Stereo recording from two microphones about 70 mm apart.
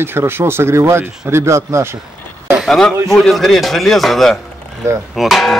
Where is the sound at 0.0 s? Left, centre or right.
Right.